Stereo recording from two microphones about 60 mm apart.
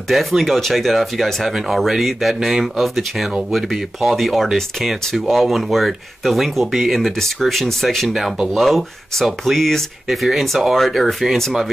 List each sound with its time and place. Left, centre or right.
0.1 s speech: centre